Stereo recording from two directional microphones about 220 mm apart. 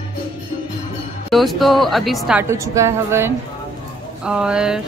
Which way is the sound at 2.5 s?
15° right (ahead or behind).